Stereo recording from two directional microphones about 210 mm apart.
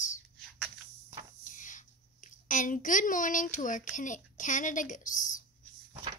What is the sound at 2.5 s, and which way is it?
A woman's voice, 40° left (ahead or behind).